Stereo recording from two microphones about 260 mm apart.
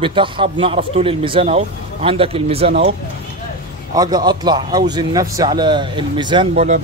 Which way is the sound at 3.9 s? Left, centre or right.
Centre.